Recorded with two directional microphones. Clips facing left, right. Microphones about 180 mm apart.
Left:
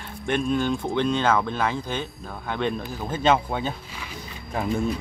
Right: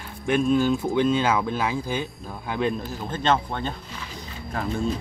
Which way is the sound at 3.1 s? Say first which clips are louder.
Left 2 dB; 10° left (ahead or behind).